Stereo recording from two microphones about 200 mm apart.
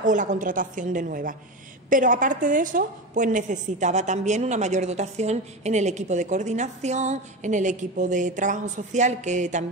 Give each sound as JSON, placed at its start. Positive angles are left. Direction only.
{"t": 0.0, "sound": "a woman's voice", "side_deg": -40}